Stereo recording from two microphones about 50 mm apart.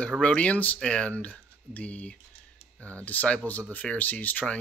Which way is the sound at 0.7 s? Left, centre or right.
Centre.